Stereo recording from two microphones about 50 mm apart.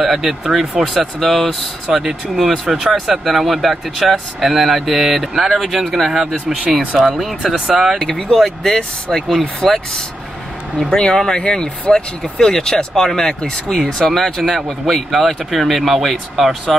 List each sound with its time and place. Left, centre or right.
0.0 s speech: centre
8.0 s speech: centre
11.0 s speech: centre